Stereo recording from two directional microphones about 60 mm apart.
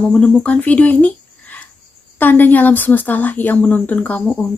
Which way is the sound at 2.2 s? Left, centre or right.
Left.